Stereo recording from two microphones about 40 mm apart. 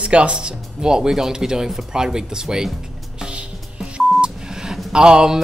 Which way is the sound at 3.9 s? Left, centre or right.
Centre.